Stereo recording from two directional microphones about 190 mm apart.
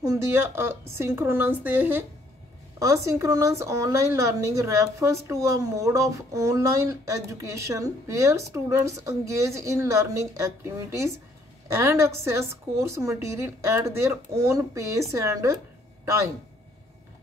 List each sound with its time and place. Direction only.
0.0 s a woman's voice: 15° right (ahead or behind)